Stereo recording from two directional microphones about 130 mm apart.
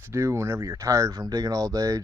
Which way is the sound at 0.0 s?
20° right (ahead or behind).